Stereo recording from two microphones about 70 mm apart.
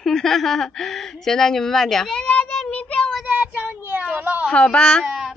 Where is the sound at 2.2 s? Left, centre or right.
Left.